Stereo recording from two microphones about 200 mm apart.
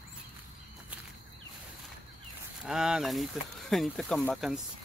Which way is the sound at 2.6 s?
5° right (ahead or behind).